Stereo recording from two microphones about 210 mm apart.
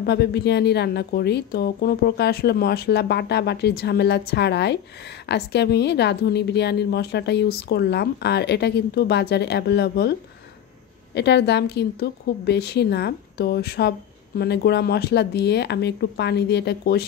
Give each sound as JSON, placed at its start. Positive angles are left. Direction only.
{"t": 0.0, "sound": "a woman's voice", "side_deg": 50}
{"t": 11.1, "sound": "a woman's voice", "side_deg": 55}